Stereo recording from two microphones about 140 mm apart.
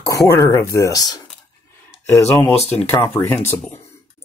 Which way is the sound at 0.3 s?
20° left (ahead or behind).